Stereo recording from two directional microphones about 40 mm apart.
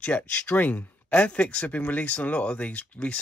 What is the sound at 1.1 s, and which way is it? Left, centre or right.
Speech, left.